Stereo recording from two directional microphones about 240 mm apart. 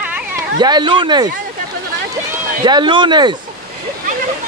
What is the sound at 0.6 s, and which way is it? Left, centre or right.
Speech, centre.